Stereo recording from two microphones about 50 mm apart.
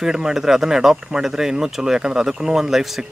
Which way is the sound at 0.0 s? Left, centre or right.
Centre.